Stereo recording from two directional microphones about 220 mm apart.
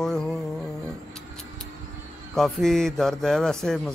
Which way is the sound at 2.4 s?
Centre (ahead or behind).